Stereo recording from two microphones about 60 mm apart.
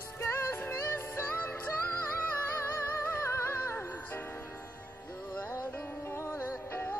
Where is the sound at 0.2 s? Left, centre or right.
Left.